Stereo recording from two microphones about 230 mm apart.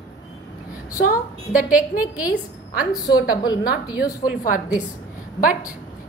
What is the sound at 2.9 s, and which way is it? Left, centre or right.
A woman's voice, centre.